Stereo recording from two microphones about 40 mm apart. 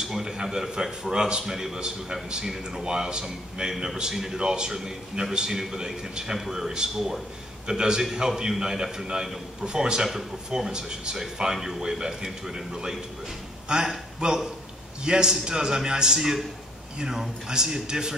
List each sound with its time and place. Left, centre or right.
0.0 s a man's voice: centre